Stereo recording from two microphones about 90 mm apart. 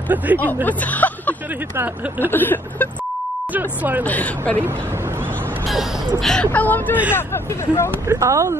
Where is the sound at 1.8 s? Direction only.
25° right (ahead or behind).